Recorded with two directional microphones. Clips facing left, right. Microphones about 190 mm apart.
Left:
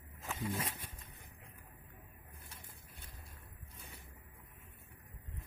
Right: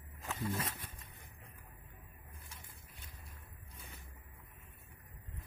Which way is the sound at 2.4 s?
60° left (ahead or behind).